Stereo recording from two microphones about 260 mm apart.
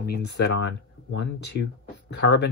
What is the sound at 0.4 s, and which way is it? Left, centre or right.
Speech, left.